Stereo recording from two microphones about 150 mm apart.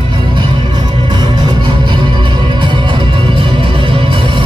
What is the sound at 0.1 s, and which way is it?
Music, 30° right (ahead or behind).